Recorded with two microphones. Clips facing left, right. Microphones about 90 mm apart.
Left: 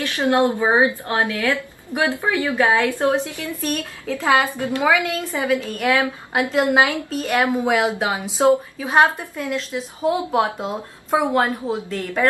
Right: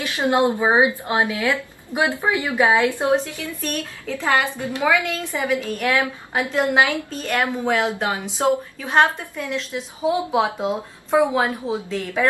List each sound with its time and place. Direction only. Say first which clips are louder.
0.0 s a woman's voice: left 1 dB; 15° right (ahead or behind)
4.2 s speech: left 3 dB; 5° left (ahead or behind)
4.8 s a woman's voice: even; 15° left (ahead or behind)
5.5 s a woman's voice: left 2 dB; 5° right (ahead or behind)